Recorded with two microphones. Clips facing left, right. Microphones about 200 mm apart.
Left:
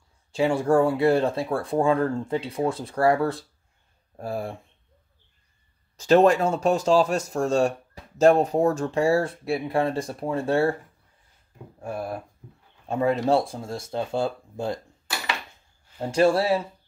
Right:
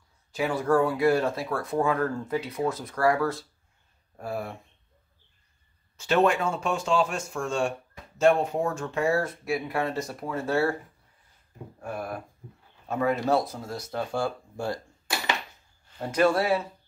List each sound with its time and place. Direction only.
0.3 s speech: 30° left (ahead or behind)
5.9 s speech: 35° left (ahead or behind)
11.8 s speech: 25° left (ahead or behind)
16.1 s speech: 30° left (ahead or behind)